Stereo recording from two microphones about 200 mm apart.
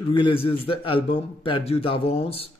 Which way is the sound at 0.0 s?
25° left (ahead or behind).